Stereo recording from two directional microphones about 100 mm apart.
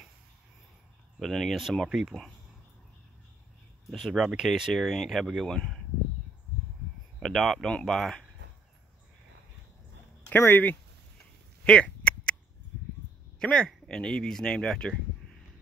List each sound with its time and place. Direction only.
1.2 s speech: centre (ahead or behind)
3.9 s speech: centre (ahead or behind)
7.2 s speech: centre (ahead or behind)
10.3 s speech: 20° left (ahead or behind)
11.6 s a sound: 10° left (ahead or behind)
13.4 s speech: 5° left (ahead or behind)